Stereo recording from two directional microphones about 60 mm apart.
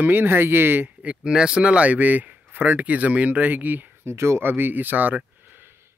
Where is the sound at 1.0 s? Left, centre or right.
Centre.